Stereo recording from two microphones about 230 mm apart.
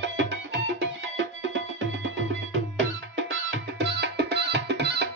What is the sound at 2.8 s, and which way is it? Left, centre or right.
Music, right.